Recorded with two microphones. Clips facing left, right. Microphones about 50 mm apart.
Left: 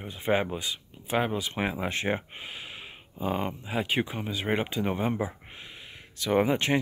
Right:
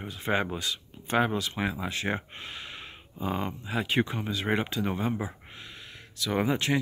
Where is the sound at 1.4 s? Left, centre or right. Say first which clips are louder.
Left 1 dB; left.